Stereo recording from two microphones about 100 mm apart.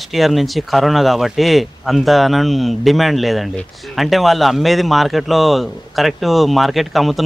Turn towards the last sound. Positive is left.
turn(degrees=0)  # may be behind; listen again after turning